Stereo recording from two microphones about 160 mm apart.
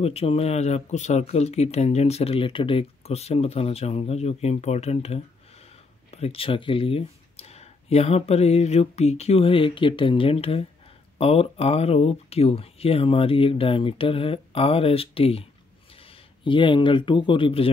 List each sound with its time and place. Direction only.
0.0 s speech: 40° left (ahead or behind)